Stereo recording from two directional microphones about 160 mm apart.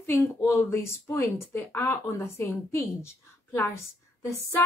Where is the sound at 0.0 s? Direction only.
15° left (ahead or behind).